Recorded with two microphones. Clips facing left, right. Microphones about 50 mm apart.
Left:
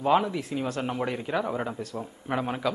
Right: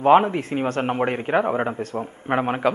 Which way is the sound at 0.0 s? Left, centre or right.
Right.